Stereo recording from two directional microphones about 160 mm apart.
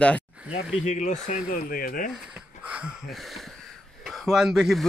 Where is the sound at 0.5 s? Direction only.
45° left (ahead or behind); by 2.1 s 65° left (ahead or behind).